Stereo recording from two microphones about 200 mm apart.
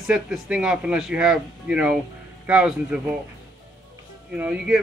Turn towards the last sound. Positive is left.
turn(degrees=-5)  # may be behind; listen again after turning